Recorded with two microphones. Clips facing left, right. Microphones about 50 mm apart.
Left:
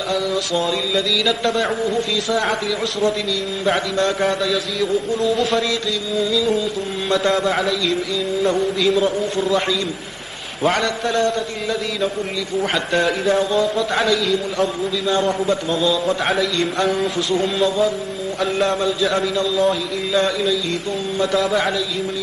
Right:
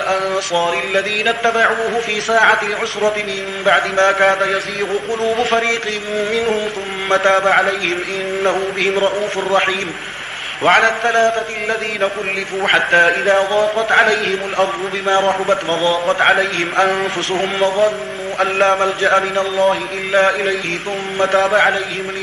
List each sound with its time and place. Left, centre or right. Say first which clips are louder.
0.1 s a man's voice: right 1 dB; right
12.6 s a man's voice: right 8 dB; right